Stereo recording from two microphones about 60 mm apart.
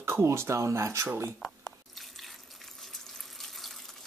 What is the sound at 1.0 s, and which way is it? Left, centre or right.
Speech, right.